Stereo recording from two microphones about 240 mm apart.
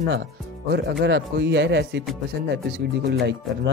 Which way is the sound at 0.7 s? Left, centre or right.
Right.